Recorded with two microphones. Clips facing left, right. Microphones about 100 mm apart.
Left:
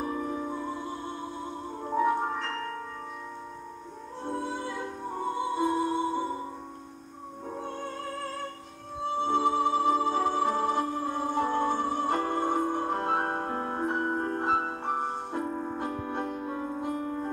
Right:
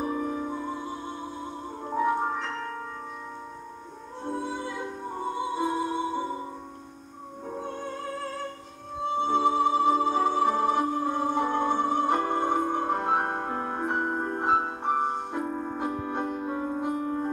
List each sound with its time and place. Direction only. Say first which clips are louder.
0.0 s music: right 2 dB; 10° right (ahead or behind)
4.6 s music: right 1 dB; 10° right (ahead or behind)
7.4 s music: right 2 dB; 15° right (ahead or behind)
9.2 s music: right 2 dB; 15° right (ahead or behind)
12.6 s music: right 2 dB; 55° right (ahead or behind)
13.0 s music: right 2 dB; 20° right (ahead or behind)
13.5 s music: right 1 dB; 30° right (ahead or behind)
13.7 s music: even; 65° right (ahead or behind)
14.4 s music: right 3 dB; 20° right (ahead or behind)
15.4 s music: right 1 dB; 40° right (ahead or behind)
15.8 s music: right 2 dB; 20° right (ahead or behind)